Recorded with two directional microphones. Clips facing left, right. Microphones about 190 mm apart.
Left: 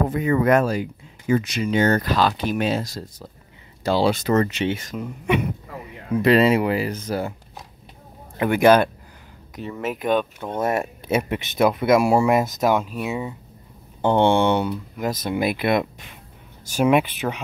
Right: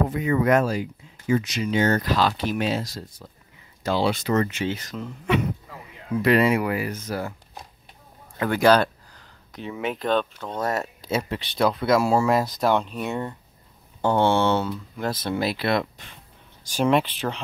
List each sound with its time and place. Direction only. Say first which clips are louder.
0.1 s speech: left 2 dB; 50° left (ahead or behind)
4.6 s speech: left 3 dB; 25° left (ahead or behind)
4.9 s speech: left 2 dB; 10° left (ahead or behind)
6.1 s speech: left 3 dB; 25° left (ahead or behind)
8.4 s speech: left 3 dB; 20° left (ahead or behind)
9.6 s speech: left 1 dB; centre (ahead or behind)
9.9 s speech: left 3 dB; 15° left (ahead or behind)
12.6 s speech: left 2 dB; 5° left (ahead or behind)
14.0 s speech: left 3 dB; 20° left (ahead or behind)